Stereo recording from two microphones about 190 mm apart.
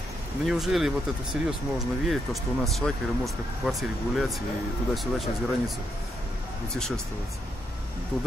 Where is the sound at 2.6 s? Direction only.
Centre (ahead or behind).